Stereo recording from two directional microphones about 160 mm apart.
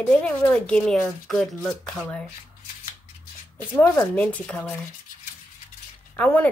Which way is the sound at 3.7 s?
20° left (ahead or behind).